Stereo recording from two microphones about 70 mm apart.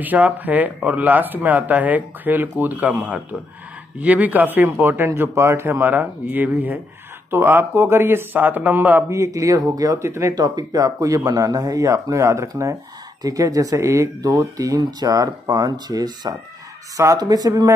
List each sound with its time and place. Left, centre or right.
0.0 s speech: right
9.1 s speech: right
10.0 s speech: right
10.3 s speech: right
13.2 s speech: right
14.8 s speech: right
16.9 s speech: right
17.2 s speech: right